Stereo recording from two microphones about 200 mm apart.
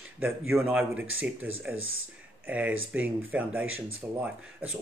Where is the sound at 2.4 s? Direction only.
5° right (ahead or behind).